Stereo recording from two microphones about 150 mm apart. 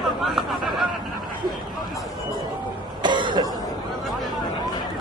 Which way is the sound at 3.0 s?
30° right (ahead or behind).